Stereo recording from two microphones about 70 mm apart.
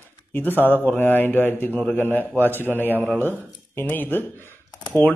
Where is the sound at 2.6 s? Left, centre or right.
Left.